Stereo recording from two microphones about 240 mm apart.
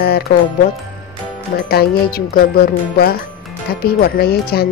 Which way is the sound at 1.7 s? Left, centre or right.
Left.